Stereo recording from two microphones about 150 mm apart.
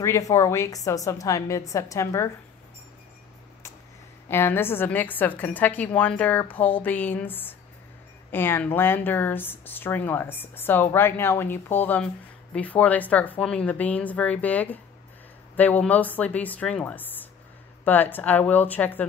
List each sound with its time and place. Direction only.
0.0 s a woman's voice: 20° left (ahead or behind)
4.3 s speech: 15° left (ahead or behind)